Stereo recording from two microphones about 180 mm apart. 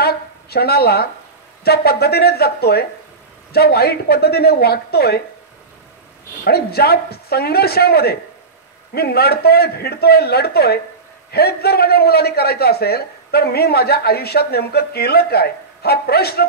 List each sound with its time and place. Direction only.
0.0 s a sound: 60° left (ahead or behind)
1.6 s a man's voice: 60° left (ahead or behind)
6.4 s a man's voice: 60° left (ahead or behind)